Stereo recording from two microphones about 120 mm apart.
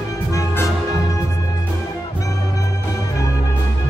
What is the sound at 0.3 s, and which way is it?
Music, 25° left (ahead or behind).